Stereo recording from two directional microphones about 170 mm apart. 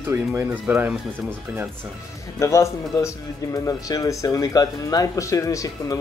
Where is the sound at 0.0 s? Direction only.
15° right (ahead or behind).